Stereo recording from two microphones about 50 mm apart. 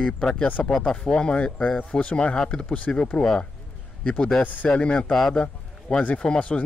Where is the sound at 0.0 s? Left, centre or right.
Left.